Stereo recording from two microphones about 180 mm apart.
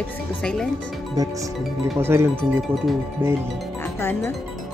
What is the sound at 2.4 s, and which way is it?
Speech, centre (ahead or behind).